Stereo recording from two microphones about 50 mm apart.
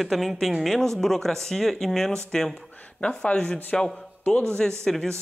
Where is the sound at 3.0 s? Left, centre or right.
Left.